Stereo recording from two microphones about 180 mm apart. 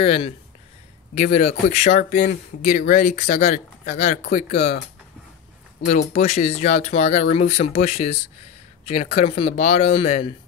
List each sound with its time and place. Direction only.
0.0 s speech: 35° left (ahead or behind)
5.9 s speech: 40° left (ahead or behind)